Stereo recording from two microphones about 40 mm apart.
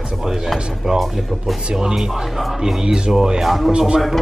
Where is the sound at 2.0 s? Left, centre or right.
Centre.